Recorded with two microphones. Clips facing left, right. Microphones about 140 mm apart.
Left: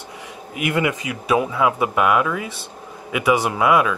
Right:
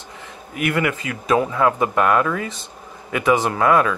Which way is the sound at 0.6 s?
20° left (ahead or behind).